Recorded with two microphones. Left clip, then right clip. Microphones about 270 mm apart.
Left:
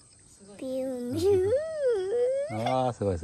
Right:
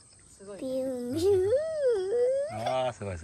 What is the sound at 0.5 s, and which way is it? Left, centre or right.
Speech, centre.